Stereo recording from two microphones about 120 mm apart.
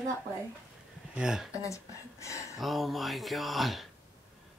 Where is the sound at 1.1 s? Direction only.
5° right (ahead or behind).